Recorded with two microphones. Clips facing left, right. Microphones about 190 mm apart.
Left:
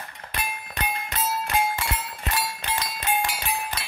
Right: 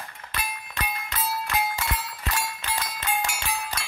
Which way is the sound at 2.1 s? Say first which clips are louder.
Left 2 dB; 30° left (ahead or behind).